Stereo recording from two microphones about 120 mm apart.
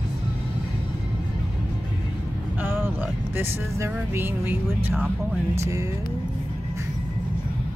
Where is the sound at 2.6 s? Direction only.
15° right (ahead or behind).